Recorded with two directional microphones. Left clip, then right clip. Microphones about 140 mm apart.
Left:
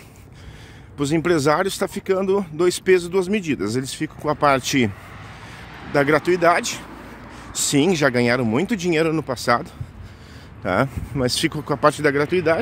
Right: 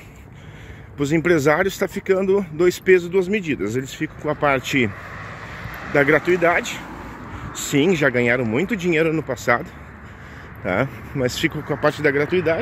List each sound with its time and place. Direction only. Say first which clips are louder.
0.9 s speech: right 1 dB; 25° left (ahead or behind)
3.1 s speech: right 1 dB; 50° left (ahead or behind)
3.9 s speech: left 1 dB; 35° left (ahead or behind)
5.1 s vehicle: right 5 dB; 35° right (ahead or behind)
5.9 s speech: right 1 dB; 35° left (ahead or behind)
7.7 s speech: right 1 dB; 40° left (ahead or behind); by 12.5 s 90° left